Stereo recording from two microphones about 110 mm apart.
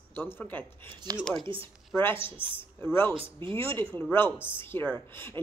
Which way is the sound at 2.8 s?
20° left (ahead or behind).